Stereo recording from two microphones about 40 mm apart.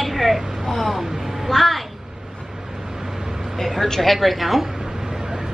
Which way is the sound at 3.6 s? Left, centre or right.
Centre.